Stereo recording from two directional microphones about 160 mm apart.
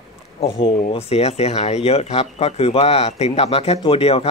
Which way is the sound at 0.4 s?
35° left (ahead or behind).